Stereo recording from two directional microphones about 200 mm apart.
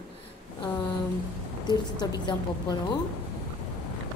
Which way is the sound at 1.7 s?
20° left (ahead or behind).